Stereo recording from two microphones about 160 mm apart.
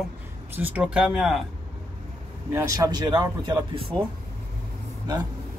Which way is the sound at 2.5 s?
20° right (ahead or behind).